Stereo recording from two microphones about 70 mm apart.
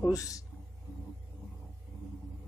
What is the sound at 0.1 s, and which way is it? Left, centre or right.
Speech, left.